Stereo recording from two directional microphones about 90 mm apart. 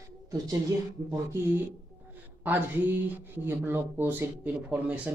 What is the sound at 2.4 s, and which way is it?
Speech, 20° right (ahead or behind).